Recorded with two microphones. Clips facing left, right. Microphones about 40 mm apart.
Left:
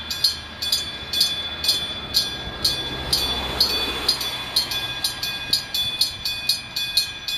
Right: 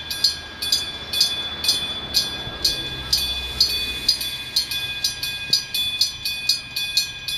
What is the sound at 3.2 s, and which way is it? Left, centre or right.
Train, left.